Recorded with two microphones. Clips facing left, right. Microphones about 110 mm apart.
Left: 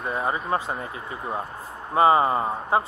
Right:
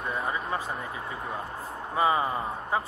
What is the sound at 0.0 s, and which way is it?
Speech, 30° left (ahead or behind).